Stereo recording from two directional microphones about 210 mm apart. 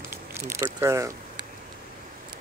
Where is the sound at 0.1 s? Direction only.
10° right (ahead or behind).